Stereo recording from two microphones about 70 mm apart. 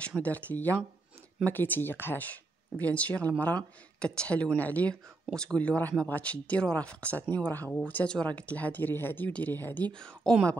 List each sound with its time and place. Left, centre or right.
0.2 s speech: left
5.3 s speech: centre; by 9.8 s left
9.9 s speech: centre